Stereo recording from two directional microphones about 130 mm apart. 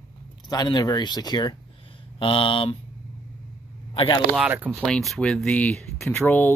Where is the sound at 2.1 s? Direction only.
45° left (ahead or behind).